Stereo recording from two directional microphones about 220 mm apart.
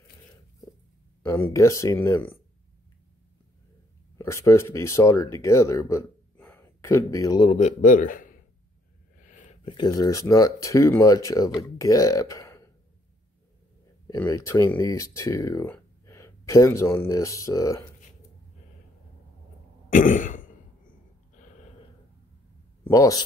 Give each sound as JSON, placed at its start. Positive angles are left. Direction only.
{"t": 1.2, "sound": "speech", "side_deg": 10}
{"t": 4.2, "sound": "speech", "side_deg": 10}
{"t": 9.2, "sound": "a sound", "side_deg": 35}
{"t": 9.7, "sound": "speech", "side_deg": 20}
{"t": 14.0, "sound": "speech", "side_deg": 15}
{"t": 19.9, "sound": "throat clearing", "side_deg": 35}
{"t": 21.4, "sound": "snort", "side_deg": 35}
{"t": 22.8, "sound": "speech", "side_deg": 15}